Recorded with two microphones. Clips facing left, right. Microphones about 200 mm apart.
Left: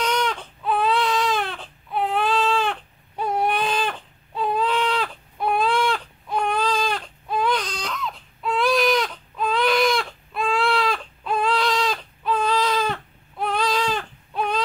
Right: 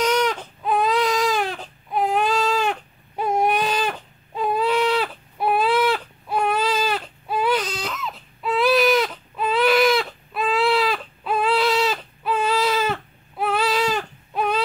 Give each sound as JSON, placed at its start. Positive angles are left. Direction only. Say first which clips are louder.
{"t": 0.0, "sound": "baby cry", "louder": "right 4 dB", "side_deg": -5}
{"t": 0.9, "sound": "baby cry", "louder": "right 2 dB", "side_deg": -40}
{"t": 1.2, "sound": "baby cry", "louder": "right 2 dB", "side_deg": -5}